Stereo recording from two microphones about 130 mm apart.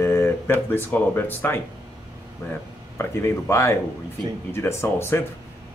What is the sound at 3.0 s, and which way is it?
A man's voice, 20° left (ahead or behind).